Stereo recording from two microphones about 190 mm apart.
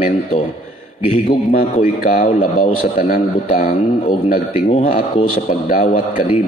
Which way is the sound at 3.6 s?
30° left (ahead or behind).